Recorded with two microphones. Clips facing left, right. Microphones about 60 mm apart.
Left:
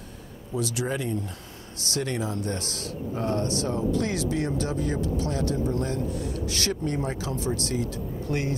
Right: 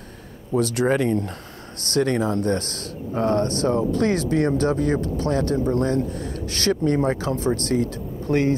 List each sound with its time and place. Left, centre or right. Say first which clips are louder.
0.6 s speech: right 8 dB; right